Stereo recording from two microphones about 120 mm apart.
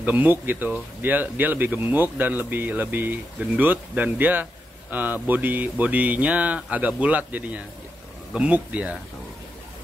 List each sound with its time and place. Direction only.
0.0 s speech: 15° right (ahead or behind)